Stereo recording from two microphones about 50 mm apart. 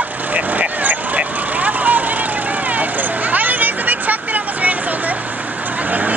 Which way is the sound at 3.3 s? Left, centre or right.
Right.